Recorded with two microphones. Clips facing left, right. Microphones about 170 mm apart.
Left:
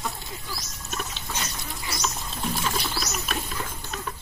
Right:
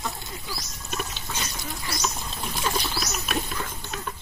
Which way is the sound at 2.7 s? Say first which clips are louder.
Right 1 dB; 5° right (ahead or behind).